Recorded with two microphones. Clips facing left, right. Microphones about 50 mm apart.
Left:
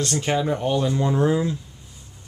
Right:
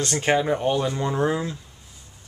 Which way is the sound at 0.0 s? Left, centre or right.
Right.